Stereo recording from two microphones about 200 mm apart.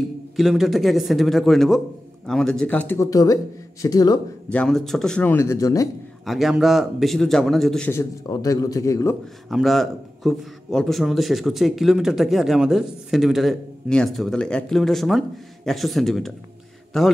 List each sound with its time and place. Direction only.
0.4 s a man's voice: centre (ahead or behind); by 4.2 s 20° left (ahead or behind)
4.5 s speech: 5° left (ahead or behind)
6.2 s a man's voice: centre (ahead or behind); by 9.1 s 15° left (ahead or behind)
9.5 s a man's voice: centre (ahead or behind)